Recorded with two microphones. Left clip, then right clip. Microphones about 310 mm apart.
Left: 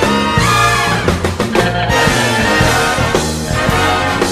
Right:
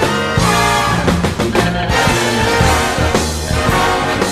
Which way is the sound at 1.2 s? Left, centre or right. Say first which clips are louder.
Left 1 dB; centre.